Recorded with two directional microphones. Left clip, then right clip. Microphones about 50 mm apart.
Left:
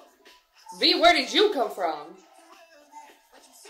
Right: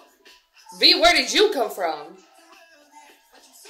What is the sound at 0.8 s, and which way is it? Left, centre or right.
A woman's voice, right.